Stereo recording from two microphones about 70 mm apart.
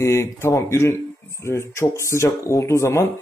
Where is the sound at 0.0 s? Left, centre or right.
Left.